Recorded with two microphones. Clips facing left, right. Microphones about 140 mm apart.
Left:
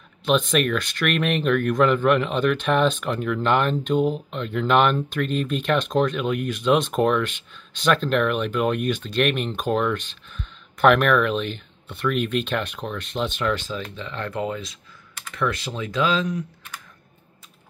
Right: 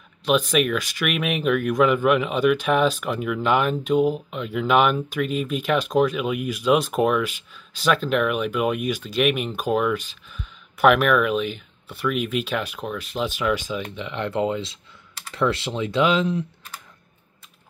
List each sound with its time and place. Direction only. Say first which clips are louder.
0.2 s speech: even; 5° right (ahead or behind); by 16.4 s 25° right (ahead or behind)